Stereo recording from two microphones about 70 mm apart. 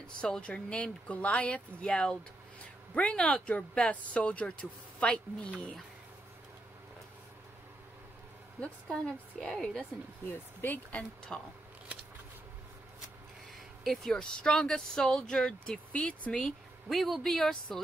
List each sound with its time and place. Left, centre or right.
0.0 s speech: centre
8.5 s speech: centre
10.3 s speech: left
14.1 s speech: centre